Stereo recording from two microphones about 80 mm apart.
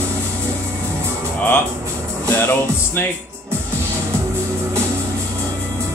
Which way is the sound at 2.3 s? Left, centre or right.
Left.